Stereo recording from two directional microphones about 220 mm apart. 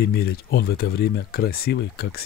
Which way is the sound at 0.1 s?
45° left (ahead or behind).